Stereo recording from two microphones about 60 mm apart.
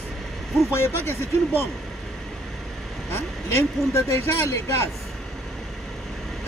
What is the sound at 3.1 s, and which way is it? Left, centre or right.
Speech, left.